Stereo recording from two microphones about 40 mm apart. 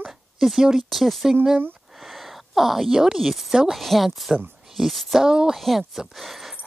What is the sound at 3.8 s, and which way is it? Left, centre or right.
Speech, centre.